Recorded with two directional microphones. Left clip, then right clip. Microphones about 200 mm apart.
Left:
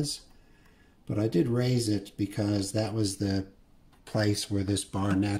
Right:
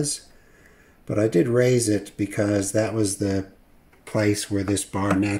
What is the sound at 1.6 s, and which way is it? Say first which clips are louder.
Speech: right 9 dB; centre (ahead or behind).